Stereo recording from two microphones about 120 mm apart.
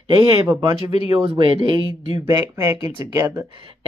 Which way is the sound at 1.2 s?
45° right (ahead or behind).